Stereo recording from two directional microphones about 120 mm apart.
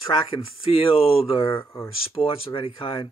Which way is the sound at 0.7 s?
50° left (ahead or behind).